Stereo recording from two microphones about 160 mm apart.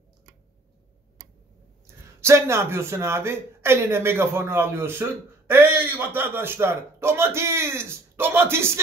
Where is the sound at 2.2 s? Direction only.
15° right (ahead or behind).